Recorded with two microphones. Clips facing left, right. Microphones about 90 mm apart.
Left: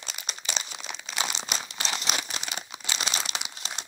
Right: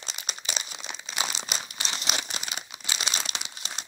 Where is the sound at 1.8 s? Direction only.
5° right (ahead or behind).